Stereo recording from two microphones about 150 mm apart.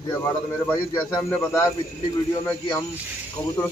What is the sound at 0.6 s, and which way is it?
A man's voice, 15° left (ahead or behind).